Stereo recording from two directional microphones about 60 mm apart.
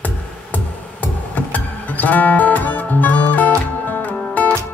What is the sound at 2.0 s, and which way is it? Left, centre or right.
Music, left.